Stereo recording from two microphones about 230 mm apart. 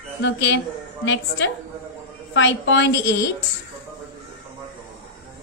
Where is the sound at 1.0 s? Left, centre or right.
Left.